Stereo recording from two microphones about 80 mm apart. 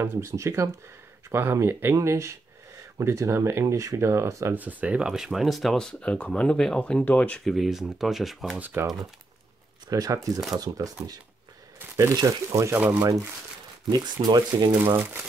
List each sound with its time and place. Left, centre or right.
0.0 s speech: right
4.6 s speech: centre
7.4 s speech: centre
8.5 s speech: right
9.8 s speech: right
12.2 s speech: right
12.7 s speech: right
13.8 s speech: right
15.0 s speech: right